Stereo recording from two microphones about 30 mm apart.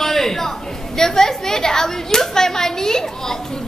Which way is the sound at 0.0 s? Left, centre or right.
Centre.